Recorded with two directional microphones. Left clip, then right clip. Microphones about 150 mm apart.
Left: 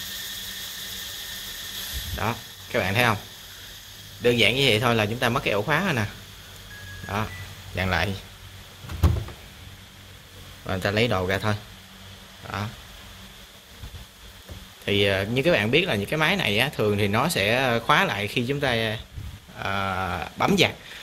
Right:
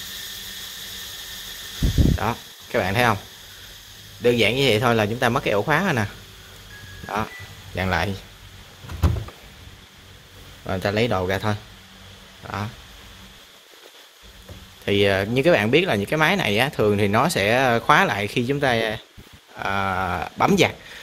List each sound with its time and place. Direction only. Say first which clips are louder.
2.1 s speech: right 3 dB; 20° right (ahead or behind)
4.2 s a man's voice: right 1 dB; 20° right (ahead or behind)
7.1 s a man's voice: right 3 dB; 25° right (ahead or behind)
10.7 s speech: right 2 dB; 15° right (ahead or behind)
14.9 s a man's voice: right 3 dB; 30° right (ahead or behind)